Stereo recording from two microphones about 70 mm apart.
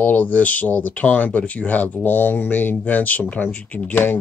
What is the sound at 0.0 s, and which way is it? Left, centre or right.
Speech, left.